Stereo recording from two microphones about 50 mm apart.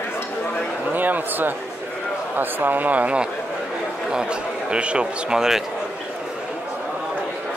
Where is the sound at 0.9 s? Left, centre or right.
Right.